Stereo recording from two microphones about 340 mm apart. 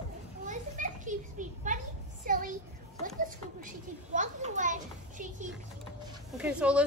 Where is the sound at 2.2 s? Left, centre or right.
Right.